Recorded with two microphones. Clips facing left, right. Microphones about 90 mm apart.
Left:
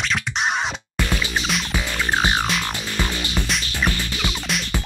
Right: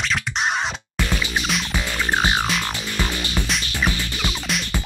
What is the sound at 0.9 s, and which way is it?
Music, centre (ahead or behind).